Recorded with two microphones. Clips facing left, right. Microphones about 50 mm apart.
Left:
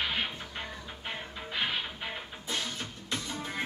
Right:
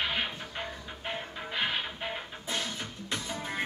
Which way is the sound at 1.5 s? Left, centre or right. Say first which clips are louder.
Right 1 dB; centre.